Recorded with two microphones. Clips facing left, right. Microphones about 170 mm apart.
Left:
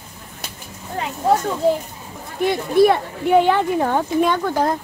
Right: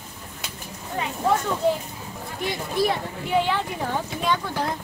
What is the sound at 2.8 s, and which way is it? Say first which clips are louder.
Speech: left 10 dB; 55° left (ahead or behind).